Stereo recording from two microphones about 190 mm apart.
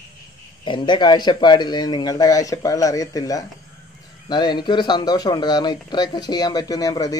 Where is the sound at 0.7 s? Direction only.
25° left (ahead or behind).